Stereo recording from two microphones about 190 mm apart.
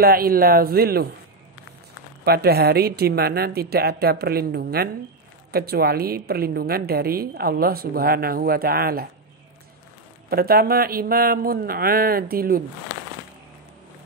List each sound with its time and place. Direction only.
0.0 s a woman's voice: 50° right (ahead or behind)
2.2 s a woman's voice: 55° right (ahead or behind)
10.3 s a woman's voice: 55° right (ahead or behind)